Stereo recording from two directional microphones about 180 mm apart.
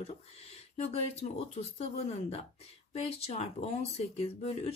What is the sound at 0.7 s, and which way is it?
Speech, 40° left (ahead or behind).